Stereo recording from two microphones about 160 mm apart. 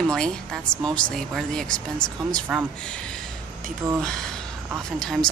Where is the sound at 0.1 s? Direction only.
5° left (ahead or behind).